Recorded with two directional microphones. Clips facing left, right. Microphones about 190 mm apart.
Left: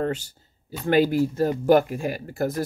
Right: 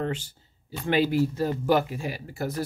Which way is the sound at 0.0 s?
45° left (ahead or behind).